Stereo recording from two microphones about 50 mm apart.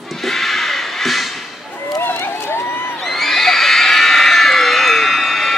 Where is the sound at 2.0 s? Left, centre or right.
Left.